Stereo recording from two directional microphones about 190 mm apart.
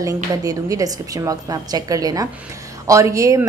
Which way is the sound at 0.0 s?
15° right (ahead or behind).